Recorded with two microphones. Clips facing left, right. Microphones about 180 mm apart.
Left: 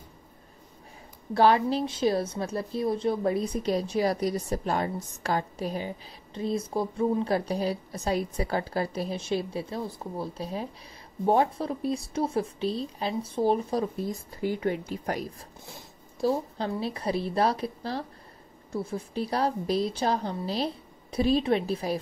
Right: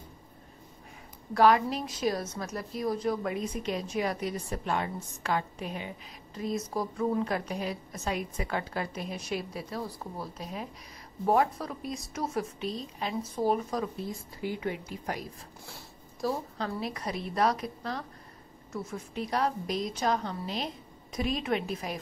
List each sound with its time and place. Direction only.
1.3 s a woman's voice: 30° left (ahead or behind)
13.9 s speech: 45° left (ahead or behind)
15.6 s a woman's voice: 25° left (ahead or behind)